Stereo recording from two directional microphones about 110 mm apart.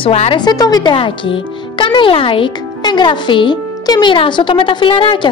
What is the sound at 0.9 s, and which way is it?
A child's voice, 50° left (ahead or behind).